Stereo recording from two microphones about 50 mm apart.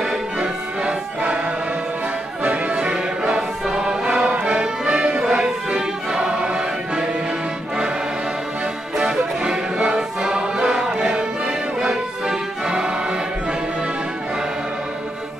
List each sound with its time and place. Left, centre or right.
0.4 s music: right
2.4 s music: right
8.9 s music: centre